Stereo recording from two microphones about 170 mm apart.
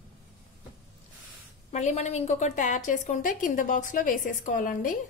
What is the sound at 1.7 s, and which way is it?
A woman's voice, 40° left (ahead or behind).